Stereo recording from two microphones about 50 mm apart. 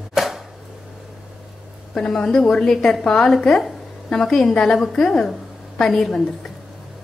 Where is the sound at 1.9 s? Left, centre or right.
Centre.